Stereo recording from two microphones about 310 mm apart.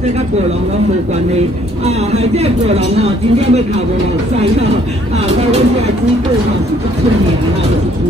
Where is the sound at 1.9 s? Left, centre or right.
Right.